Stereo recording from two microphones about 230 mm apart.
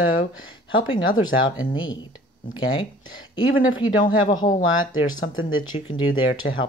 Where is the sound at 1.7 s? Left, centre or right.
Centre.